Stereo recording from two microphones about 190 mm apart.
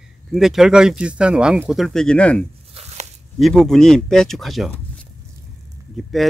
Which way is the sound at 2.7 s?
35° right (ahead or behind).